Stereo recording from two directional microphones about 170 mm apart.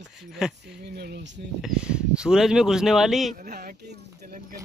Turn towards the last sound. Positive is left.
turn(degrees=-60)  # may be behind; listen again after turning